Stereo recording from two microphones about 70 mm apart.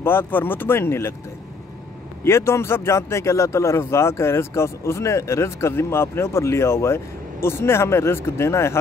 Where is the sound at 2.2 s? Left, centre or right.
Left.